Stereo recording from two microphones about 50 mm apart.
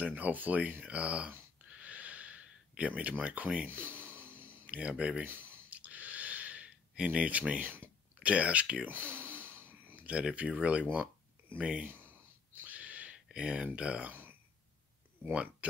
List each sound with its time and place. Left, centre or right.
0.0 s speech: right
1.7 s wheeze: right
2.8 s speech: right
3.6 s a sound: right
4.6 s speech: right
5.2 s clicking: right
5.8 s a sound: right
8.2 s speech: right
8.8 s speech: right
11.8 s a sound: right
12.6 s a sound: right
13.7 s speech: right